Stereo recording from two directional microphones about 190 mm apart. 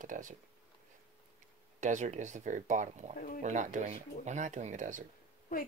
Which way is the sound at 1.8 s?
40° right (ahead or behind).